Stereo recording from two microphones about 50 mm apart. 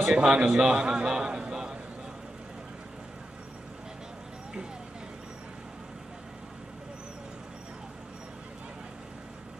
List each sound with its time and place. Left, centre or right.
0.0 s a man's voice: centre